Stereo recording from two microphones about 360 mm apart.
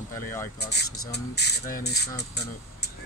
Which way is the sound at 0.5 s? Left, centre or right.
Left.